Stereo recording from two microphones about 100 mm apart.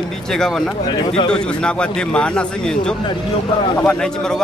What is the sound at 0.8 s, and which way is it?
Speech, 45° left (ahead or behind).